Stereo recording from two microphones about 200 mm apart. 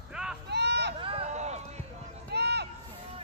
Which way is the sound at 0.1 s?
5° right (ahead or behind).